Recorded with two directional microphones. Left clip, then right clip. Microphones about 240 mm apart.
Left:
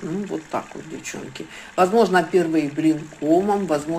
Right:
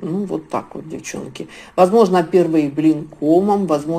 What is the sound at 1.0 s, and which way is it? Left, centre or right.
Speech, centre.